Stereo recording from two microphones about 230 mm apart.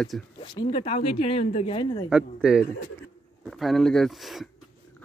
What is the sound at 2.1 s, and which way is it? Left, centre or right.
Speech, centre.